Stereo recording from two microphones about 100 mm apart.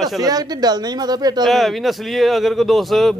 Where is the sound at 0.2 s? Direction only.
40° right (ahead or behind).